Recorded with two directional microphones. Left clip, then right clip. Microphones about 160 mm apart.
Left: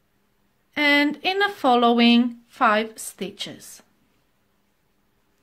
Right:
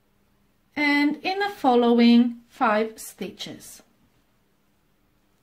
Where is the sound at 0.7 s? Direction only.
25° left (ahead or behind).